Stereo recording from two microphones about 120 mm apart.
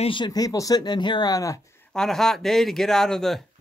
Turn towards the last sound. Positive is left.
turn(degrees=5)  # may be behind; listen again after turning